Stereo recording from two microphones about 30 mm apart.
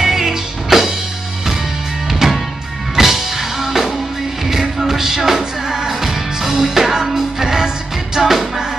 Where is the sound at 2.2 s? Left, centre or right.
Centre.